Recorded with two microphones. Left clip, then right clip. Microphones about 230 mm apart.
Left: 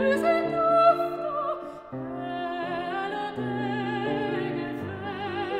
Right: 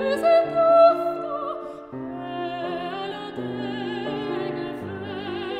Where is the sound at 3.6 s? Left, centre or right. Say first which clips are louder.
Left 1 dB; right.